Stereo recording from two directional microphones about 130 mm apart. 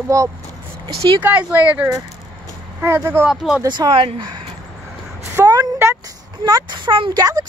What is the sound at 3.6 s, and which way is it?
Speech, 35° right (ahead or behind).